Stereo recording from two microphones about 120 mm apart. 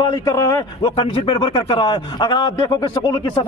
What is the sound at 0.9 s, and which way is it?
A man's voice, 45° left (ahead or behind).